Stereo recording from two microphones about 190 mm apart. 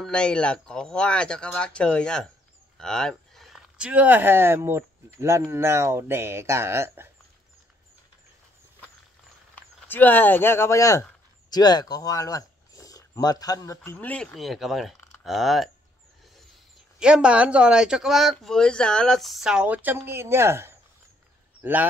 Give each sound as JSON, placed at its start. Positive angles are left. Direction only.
{"t": 0.0, "sound": "speech", "side_deg": 5}
{"t": 9.6, "sound": "speech", "side_deg": 10}
{"t": 17.0, "sound": "speech", "side_deg": -5}